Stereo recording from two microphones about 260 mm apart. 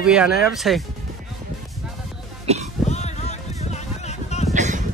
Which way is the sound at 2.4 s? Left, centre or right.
Right.